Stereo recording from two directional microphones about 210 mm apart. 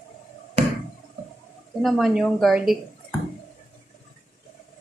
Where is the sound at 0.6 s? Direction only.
30° right (ahead or behind).